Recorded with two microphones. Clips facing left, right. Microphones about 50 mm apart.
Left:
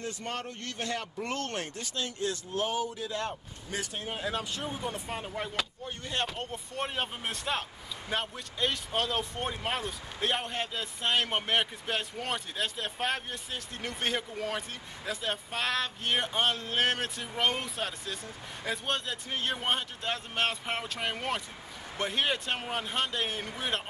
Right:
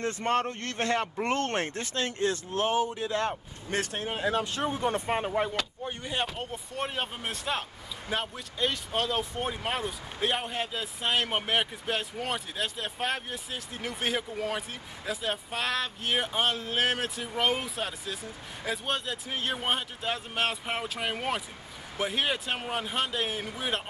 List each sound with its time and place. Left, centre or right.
0.0 s speech: right
4.1 s speech: right
4.7 s speech: right
5.9 s speech: centre